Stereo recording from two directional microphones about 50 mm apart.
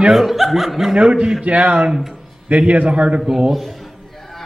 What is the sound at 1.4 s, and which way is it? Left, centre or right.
Speech, right.